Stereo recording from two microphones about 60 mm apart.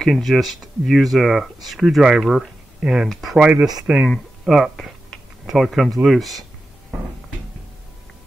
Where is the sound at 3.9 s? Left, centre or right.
Right.